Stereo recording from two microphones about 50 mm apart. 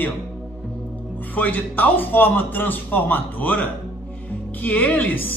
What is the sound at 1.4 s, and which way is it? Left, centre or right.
A woman's voice, left.